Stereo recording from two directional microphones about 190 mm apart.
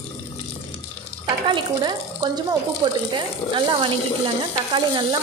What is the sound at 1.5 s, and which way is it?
Speech, 20° right (ahead or behind).